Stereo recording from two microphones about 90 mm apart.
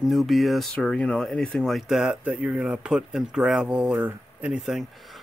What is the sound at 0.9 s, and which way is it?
Speech, 10° left (ahead or behind).